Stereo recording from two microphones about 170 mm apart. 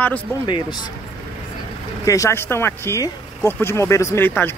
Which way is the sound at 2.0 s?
20° left (ahead or behind).